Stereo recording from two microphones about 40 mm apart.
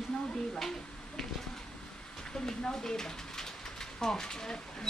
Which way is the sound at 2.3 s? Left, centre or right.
Centre.